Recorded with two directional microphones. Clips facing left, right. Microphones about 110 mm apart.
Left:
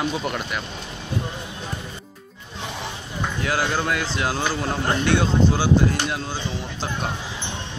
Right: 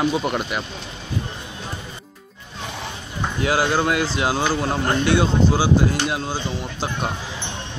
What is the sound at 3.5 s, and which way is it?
Speech, 15° right (ahead or behind).